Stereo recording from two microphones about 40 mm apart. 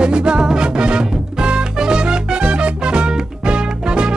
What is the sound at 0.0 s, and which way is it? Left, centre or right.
Music, right.